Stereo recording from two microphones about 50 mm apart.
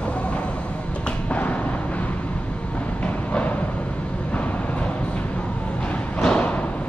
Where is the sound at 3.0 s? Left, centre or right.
Left.